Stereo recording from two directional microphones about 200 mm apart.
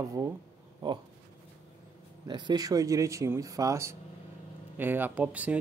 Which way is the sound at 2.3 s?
20° right (ahead or behind).